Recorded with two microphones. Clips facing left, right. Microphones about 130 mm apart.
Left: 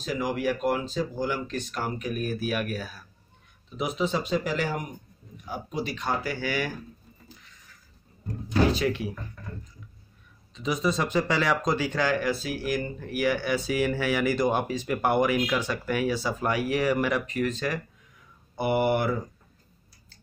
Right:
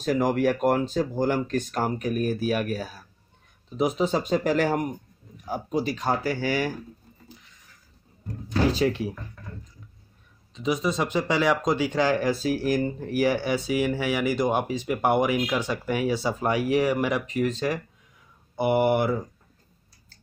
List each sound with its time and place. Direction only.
0.0 s speech: 50° right (ahead or behind)
5.4 s speech: 35° right (ahead or behind)
8.7 s speech: 35° right (ahead or behind)
10.5 s speech: 15° right (ahead or behind)
13.7 s speech: 15° right (ahead or behind)